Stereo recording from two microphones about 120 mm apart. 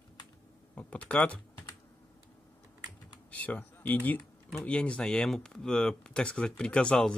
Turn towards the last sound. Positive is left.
turn(degrees=5)  # may be behind; listen again after turning